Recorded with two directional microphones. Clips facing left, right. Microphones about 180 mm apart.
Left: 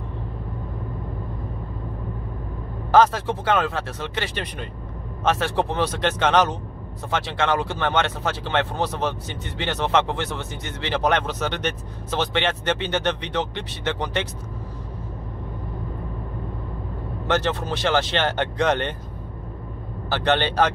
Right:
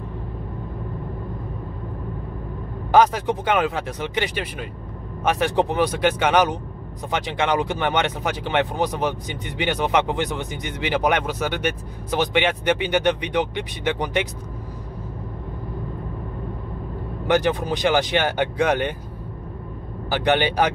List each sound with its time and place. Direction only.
2.9 s speech: 15° right (ahead or behind)
17.3 s speech: 15° right (ahead or behind)
20.1 s speech: 15° right (ahead or behind)